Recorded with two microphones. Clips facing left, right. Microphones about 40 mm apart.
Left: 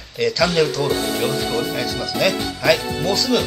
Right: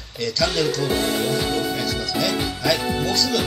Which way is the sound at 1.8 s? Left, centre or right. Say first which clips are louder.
Left 2 dB; left.